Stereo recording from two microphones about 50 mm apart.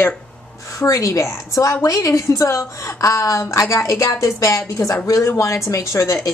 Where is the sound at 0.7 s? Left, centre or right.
Left.